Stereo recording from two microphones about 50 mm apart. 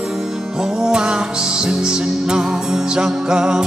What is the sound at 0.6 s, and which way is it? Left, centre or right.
Music, centre.